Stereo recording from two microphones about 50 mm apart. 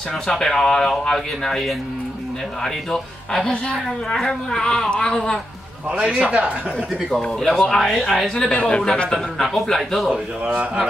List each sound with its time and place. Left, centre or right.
0.3 s speech: centre
5.9 s a man's voice: centre
7.1 s speech: centre
8.4 s speech: left
9.4 s speech: centre
10.1 s a man's voice: right